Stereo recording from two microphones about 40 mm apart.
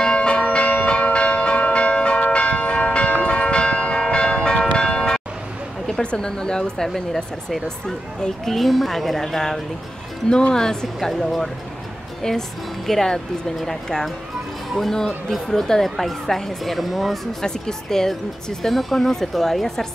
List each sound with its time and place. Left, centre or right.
0.0 s church bell: left
4.6 s bell: left
6.0 s a woman's voice: left
8.5 s a woman's voice: centre
11.0 s a woman's voice: centre